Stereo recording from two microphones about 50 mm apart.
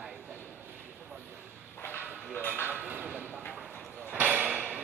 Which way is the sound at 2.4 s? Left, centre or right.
Left.